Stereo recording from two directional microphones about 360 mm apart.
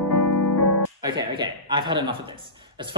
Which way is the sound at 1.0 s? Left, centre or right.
Centre.